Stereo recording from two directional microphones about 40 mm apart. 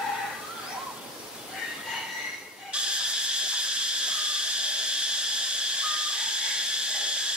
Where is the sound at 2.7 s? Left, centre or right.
Right.